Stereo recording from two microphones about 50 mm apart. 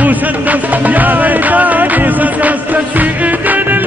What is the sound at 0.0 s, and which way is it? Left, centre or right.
Music, right.